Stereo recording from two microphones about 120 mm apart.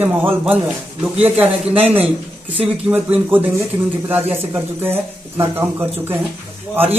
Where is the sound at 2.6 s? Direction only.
15° right (ahead or behind).